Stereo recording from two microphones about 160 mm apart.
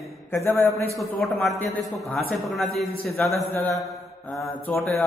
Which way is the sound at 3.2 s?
10° left (ahead or behind).